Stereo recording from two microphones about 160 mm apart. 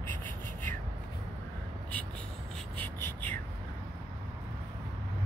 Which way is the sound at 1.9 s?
5° left (ahead or behind).